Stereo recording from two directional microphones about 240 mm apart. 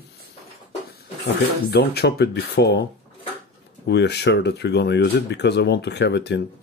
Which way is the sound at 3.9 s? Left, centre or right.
Left.